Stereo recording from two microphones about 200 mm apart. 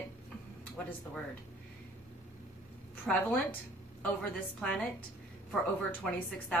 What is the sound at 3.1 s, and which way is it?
Speech, centre (ahead or behind).